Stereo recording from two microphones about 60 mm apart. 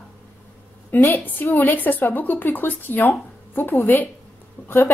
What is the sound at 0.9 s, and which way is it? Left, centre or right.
A woman's voice, left.